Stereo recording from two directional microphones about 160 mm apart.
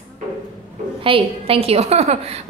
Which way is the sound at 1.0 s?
35° right (ahead or behind).